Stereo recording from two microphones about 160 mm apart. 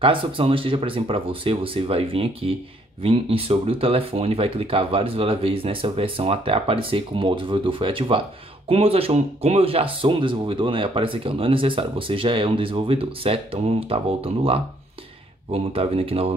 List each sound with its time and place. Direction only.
0.0 s speech: 35° right (ahead or behind)